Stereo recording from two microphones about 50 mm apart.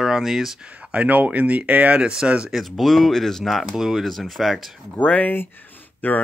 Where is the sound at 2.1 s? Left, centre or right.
Centre.